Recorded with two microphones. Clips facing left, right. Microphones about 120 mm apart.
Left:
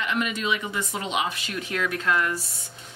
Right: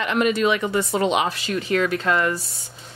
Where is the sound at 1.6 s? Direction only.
30° right (ahead or behind).